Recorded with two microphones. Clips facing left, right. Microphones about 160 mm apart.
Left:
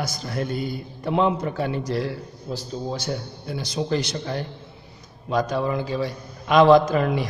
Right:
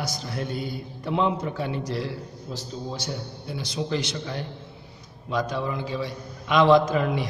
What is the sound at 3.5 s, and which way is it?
A man's voice, 40° left (ahead or behind).